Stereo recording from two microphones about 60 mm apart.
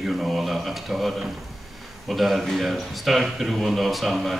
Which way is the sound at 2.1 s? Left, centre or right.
Centre.